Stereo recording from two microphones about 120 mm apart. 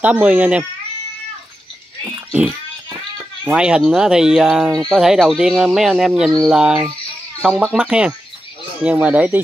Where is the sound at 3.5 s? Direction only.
5° right (ahead or behind).